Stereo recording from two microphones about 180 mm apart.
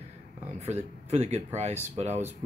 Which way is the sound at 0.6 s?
35° right (ahead or behind).